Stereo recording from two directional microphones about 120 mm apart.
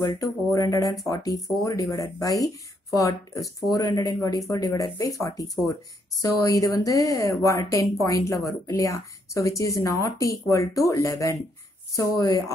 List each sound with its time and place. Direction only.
0.0 s speech: 30° left (ahead or behind)